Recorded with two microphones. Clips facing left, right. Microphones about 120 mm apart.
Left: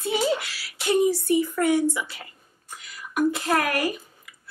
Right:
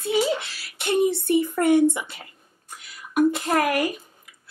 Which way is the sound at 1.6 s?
55° right (ahead or behind).